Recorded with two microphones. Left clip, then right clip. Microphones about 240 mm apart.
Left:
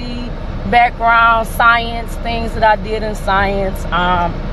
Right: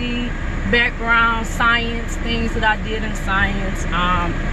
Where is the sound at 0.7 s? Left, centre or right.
Centre.